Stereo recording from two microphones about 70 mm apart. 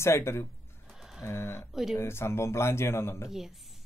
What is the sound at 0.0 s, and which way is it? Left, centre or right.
Speech, left.